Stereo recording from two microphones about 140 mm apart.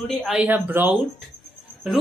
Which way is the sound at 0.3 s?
10° right (ahead or behind).